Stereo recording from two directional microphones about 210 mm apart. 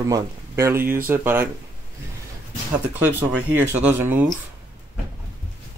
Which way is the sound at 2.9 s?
10° right (ahead or behind).